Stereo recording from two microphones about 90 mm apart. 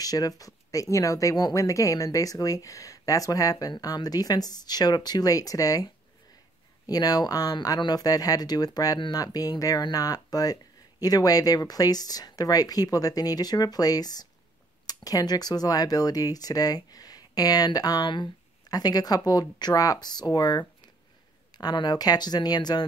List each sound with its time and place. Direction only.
0.0 s speech: 45° left (ahead or behind)
6.9 s speech: 45° left (ahead or behind)